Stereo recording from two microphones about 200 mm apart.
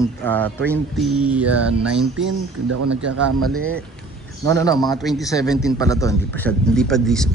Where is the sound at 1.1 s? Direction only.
5° right (ahead or behind).